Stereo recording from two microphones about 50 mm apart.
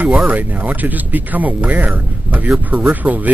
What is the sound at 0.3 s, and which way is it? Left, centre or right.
A man's voice, right.